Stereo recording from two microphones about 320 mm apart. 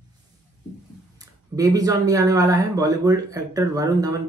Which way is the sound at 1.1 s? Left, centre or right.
Centre.